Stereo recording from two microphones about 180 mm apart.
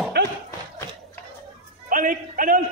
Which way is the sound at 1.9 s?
50° right (ahead or behind).